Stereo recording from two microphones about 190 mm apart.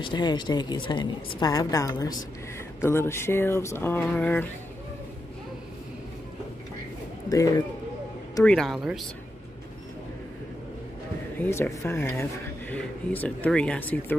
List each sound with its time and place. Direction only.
0.0 s a woman's voice: 25° left (ahead or behind)
7.2 s a woman's voice: 20° left (ahead or behind)
8.5 s speech: centre (ahead or behind)
11.3 s speech: 10° left (ahead or behind)